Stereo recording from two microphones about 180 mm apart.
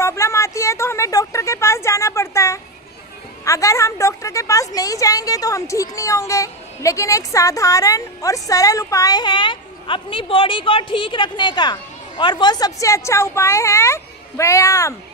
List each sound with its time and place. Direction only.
0.0 s a woman's voice: 15° left (ahead or behind)